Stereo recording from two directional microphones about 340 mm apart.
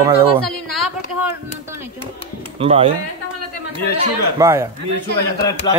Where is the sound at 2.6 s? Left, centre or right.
Centre.